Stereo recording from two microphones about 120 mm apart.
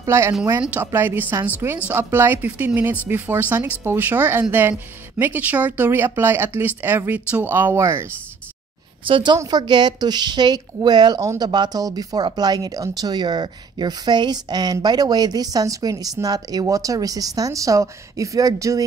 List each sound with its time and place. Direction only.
0.0 s speech: 25° right (ahead or behind)
9.0 s a woman's voice: 45° right (ahead or behind)